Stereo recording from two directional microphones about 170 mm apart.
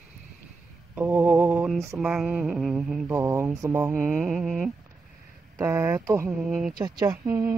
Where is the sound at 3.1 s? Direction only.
15° right (ahead or behind).